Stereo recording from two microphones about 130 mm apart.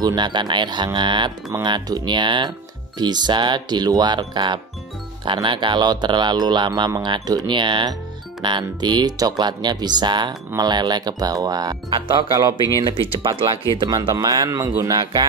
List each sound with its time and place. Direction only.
0.0 s speech: 35° right (ahead or behind)